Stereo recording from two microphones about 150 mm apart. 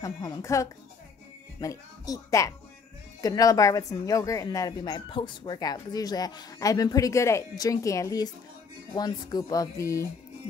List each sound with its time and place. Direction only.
0.0 s speech: 20° left (ahead or behind)